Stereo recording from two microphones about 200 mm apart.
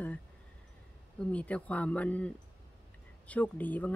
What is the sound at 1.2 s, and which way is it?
Speech, 5° left (ahead or behind).